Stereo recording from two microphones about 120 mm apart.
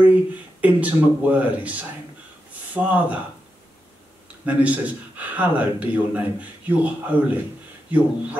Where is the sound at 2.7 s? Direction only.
15° right (ahead or behind).